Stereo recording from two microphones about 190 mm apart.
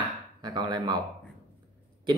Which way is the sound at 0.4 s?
20° right (ahead or behind).